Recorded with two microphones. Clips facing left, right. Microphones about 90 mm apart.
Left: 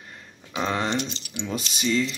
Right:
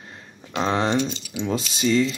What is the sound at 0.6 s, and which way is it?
Speech, 25° right (ahead or behind).